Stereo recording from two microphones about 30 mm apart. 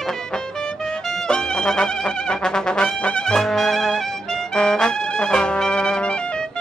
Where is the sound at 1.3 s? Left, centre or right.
Left.